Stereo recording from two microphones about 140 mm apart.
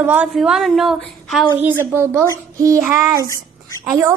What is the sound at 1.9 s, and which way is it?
A woman's voice, 15° right (ahead or behind).